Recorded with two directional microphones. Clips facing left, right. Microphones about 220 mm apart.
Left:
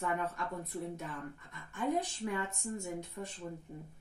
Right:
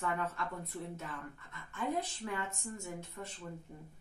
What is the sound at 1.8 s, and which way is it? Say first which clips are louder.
A woman's voice: left 3 dB; 15° left (ahead or behind).